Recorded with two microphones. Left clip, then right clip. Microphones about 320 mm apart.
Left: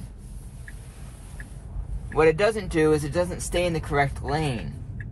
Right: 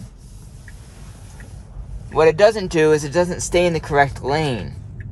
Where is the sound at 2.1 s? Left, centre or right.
Right.